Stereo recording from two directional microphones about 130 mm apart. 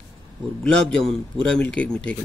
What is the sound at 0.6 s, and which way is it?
A man's voice, 5° left (ahead or behind).